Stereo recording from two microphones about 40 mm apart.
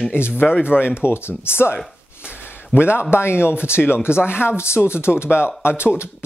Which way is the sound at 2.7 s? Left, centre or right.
Left.